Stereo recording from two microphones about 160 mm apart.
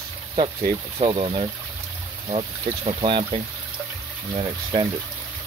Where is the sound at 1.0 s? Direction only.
35° right (ahead or behind).